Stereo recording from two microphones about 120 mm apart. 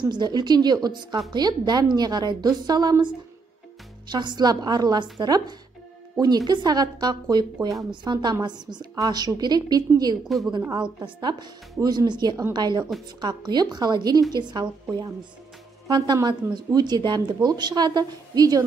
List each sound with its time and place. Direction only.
0.0 s a woman's voice: 35° right (ahead or behind)
10.2 s a woman's voice: centre (ahead or behind)
10.7 s a woman's voice: 35° right (ahead or behind)